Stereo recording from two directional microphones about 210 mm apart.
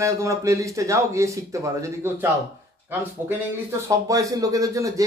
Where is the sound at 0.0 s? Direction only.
15° right (ahead or behind).